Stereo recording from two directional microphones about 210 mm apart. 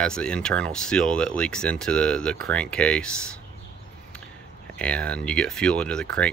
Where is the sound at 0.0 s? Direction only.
5° left (ahead or behind).